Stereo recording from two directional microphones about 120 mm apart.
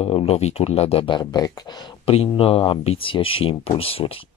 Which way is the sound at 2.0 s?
55° left (ahead or behind).